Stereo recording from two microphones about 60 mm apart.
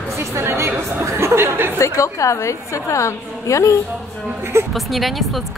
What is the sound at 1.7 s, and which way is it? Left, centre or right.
A woman's voice, left.